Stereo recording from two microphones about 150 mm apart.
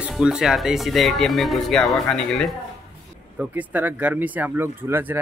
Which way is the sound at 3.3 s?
10° right (ahead or behind).